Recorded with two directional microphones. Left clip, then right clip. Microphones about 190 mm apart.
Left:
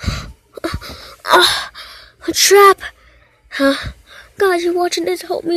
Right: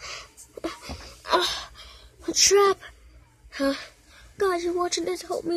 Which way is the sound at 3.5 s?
25° left (ahead or behind).